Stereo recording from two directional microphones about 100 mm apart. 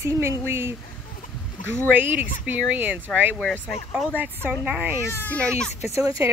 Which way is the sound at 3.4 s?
15° left (ahead or behind).